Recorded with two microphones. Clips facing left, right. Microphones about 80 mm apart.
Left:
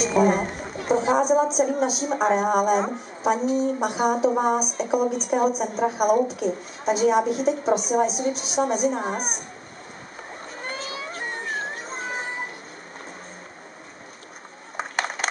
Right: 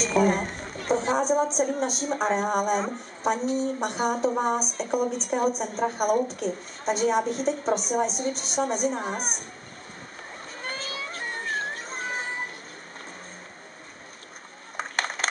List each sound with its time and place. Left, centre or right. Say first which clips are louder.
0.0 s speech: left 3 dB; centre
10.6 s a sound: left 2 dB; centre
14.8 s crushing: left 2 dB; centre